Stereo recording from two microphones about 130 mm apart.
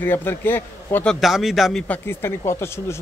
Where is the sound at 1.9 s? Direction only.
20° left (ahead or behind).